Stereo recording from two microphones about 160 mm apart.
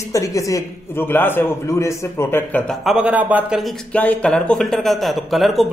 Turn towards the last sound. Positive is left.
turn(degrees=0)  # may be behind; listen again after turning